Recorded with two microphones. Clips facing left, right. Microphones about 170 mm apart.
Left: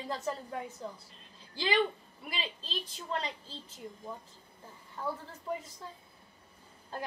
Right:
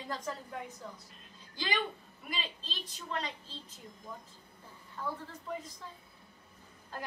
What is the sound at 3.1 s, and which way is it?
Speech, 30° left (ahead or behind).